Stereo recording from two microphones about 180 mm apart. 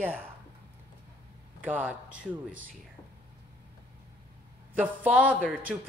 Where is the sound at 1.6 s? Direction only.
10° right (ahead or behind).